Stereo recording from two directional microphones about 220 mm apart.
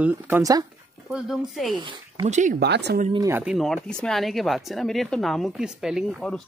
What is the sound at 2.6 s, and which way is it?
Speech, 50° right (ahead or behind).